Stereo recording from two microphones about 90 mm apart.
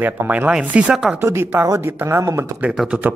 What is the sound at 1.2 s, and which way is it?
Speech, 25° right (ahead or behind).